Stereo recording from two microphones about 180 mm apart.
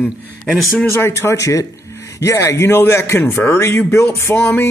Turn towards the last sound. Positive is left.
turn(degrees=15)  # may be behind; listen again after turning